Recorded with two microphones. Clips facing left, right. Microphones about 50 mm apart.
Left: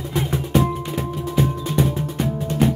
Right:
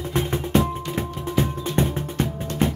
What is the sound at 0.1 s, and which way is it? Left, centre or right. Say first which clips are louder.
Music: left 1 dB; right.